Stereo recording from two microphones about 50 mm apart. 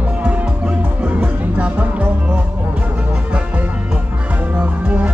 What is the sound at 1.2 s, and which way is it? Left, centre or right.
Music, right.